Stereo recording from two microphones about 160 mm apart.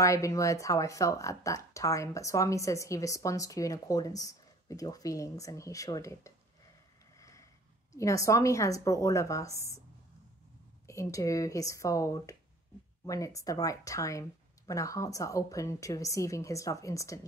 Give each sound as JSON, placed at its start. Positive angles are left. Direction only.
{"t": 0.0, "sound": "speech", "side_deg": 20}
{"t": 7.2, "sound": "a sound", "side_deg": 20}
{"t": 7.9, "sound": "speech", "side_deg": 20}
{"t": 10.9, "sound": "speech", "side_deg": 20}